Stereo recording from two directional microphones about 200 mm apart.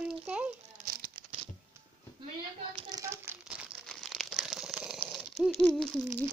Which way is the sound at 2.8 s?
20° right (ahead or behind).